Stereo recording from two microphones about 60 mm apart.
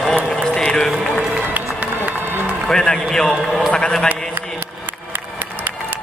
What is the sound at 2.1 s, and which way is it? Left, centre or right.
Run, right.